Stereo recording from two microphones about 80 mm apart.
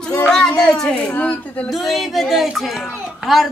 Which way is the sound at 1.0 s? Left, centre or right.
Centre.